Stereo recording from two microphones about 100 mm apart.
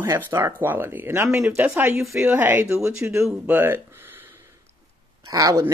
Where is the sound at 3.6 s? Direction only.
20° right (ahead or behind).